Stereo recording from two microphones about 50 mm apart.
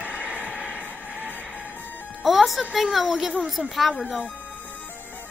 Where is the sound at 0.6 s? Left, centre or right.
Right.